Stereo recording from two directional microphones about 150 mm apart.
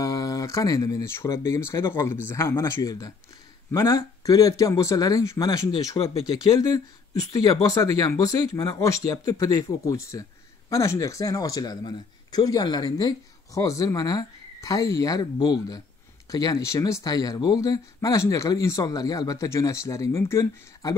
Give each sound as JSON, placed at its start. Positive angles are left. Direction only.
{"t": 0.0, "sound": "a man's voice", "side_deg": 25}